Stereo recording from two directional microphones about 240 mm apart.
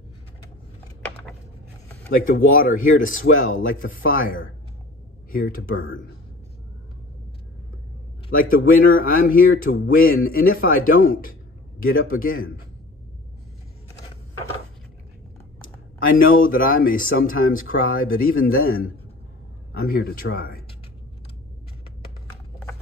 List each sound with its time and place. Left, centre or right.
2.0 s speech: left
5.3 s speech: left
8.3 s speech: left
16.3 s speech: left
22.3 s a sound: centre